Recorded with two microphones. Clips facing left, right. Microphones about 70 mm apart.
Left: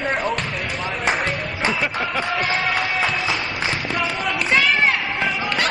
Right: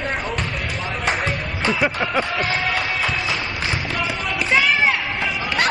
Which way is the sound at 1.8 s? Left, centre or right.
Centre.